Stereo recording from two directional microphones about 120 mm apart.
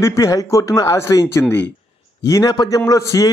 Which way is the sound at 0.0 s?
25° left (ahead or behind).